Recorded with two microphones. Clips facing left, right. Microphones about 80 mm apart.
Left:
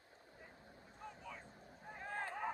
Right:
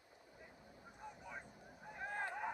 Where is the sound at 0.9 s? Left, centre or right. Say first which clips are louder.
Even; centre.